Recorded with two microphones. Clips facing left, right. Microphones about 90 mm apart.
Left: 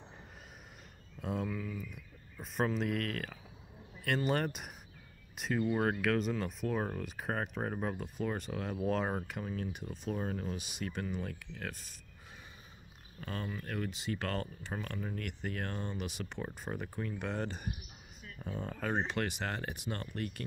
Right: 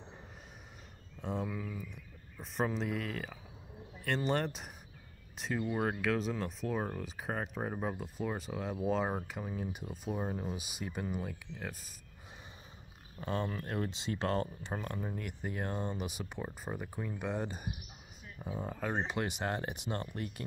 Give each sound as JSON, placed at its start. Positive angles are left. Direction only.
{"t": 1.2, "sound": "speech", "side_deg": 0}
{"t": 1.5, "sound": "speech", "side_deg": -15}
{"t": 2.4, "sound": "speech", "side_deg": 0}
{"t": 13.2, "sound": "speech", "side_deg": -25}